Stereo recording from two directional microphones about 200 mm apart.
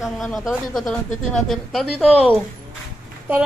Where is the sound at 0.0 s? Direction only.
Centre (ahead or behind).